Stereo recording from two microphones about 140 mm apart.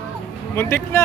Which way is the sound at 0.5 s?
15° left (ahead or behind).